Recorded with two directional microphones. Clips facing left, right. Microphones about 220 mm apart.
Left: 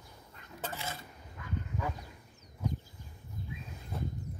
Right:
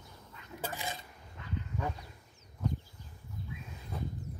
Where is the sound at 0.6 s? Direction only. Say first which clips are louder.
Right 1 dB; 15° right (ahead or behind).